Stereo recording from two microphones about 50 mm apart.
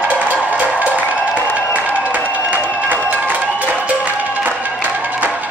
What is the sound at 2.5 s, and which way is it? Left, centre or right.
Crowd, right.